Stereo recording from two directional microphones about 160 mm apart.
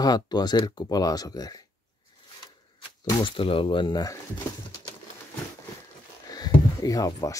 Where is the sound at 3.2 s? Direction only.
35° left (ahead or behind).